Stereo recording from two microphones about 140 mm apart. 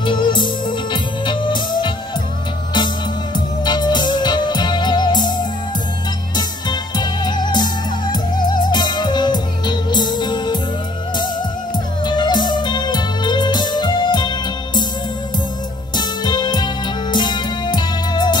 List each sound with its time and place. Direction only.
0.0 s music: 35° left (ahead or behind)
3.3 s music: 30° left (ahead or behind)
12.0 s music: 35° left (ahead or behind)
16.0 s music: 30° left (ahead or behind)